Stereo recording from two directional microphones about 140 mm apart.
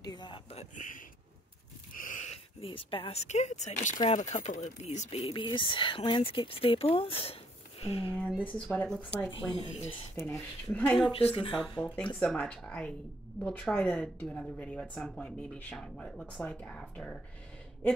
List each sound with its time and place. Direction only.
0.0 s speech: 30° left (ahead or behind)
0.5 s speech: 50° left (ahead or behind)
2.0 s a sound: 70° left (ahead or behind)
2.3 s speech: 40° left (ahead or behind)
5.3 s speech: 35° left (ahead or behind)
8.1 s a woman's voice: 10° left (ahead or behind)
9.6 s speech: 50° left (ahead or behind)
10.2 s speech: 10° left (ahead or behind)
11.1 s speech: 45° left (ahead or behind)
11.8 s a woman's voice: 10° left (ahead or behind)